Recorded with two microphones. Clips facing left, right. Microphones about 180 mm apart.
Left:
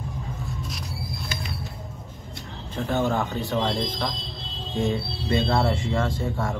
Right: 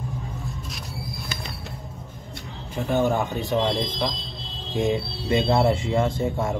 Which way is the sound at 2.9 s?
20° right (ahead or behind).